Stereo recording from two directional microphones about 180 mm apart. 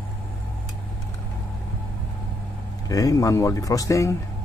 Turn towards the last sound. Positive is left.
turn(degrees=15)  # may be behind; listen again after turning